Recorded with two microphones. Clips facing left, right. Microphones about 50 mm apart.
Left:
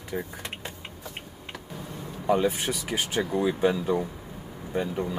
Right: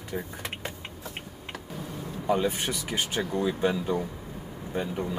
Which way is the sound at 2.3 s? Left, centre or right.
Centre.